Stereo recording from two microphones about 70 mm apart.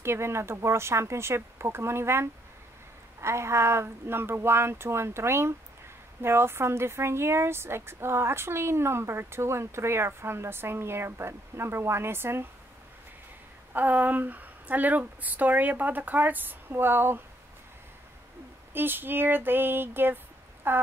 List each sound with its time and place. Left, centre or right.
0.0 s speech: right
13.7 s speech: right
18.7 s speech: right